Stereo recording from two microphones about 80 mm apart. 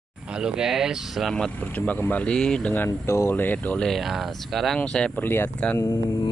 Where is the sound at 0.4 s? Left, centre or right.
Centre.